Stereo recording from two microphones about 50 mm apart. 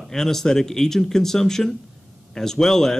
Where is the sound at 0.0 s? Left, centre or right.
Centre.